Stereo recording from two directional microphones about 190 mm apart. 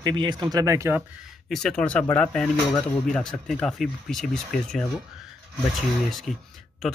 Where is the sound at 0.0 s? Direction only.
25° right (ahead or behind).